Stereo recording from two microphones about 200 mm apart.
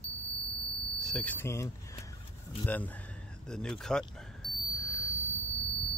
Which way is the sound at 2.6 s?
10° left (ahead or behind).